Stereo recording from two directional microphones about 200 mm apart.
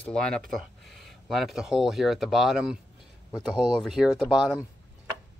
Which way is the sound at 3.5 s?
20° left (ahead or behind).